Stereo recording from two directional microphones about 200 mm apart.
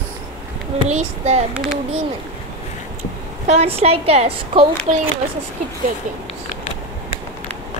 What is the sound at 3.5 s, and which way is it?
A woman's voice, 30° right (ahead or behind).